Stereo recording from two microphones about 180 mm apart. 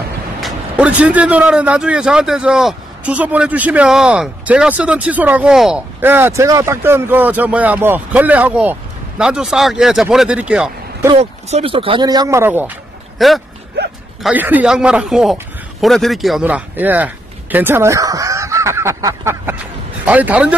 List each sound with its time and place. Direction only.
0.4 s a man's voice: 5° right (ahead or behind)
11.1 s speech: 35° right (ahead or behind); by 12.7 s 10° right (ahead or behind)
13.2 s a man's voice: centre (ahead or behind)